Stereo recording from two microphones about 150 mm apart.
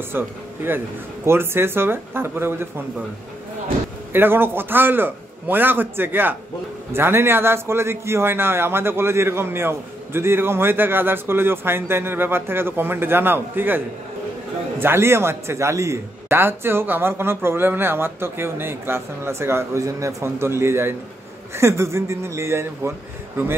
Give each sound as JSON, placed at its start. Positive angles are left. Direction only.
{"t": 0.1, "sound": "a man's voice", "side_deg": -15}
{"t": 4.1, "sound": "a man's voice", "side_deg": -15}